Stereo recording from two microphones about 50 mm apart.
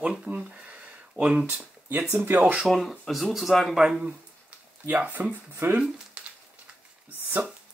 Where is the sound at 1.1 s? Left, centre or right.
Right.